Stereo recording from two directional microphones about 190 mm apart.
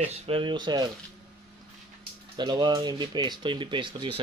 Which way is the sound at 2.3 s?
25° right (ahead or behind).